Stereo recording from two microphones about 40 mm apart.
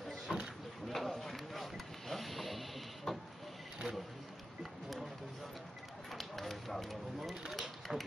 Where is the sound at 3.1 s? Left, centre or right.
Centre.